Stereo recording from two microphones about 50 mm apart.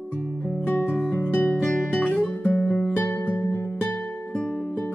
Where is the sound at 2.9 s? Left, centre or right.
Left.